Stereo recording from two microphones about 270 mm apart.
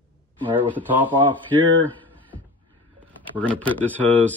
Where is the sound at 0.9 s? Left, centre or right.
Centre.